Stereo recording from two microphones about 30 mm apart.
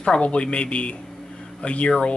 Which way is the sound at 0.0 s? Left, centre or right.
Left.